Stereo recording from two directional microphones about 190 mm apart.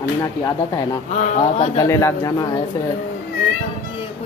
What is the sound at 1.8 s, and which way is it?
Speech, 15° left (ahead or behind).